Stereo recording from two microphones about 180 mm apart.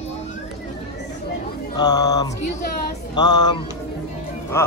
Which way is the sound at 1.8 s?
20° left (ahead or behind).